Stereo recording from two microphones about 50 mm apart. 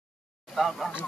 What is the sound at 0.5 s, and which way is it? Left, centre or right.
Speech, centre.